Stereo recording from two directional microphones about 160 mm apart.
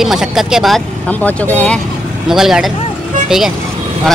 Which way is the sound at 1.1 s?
10° left (ahead or behind).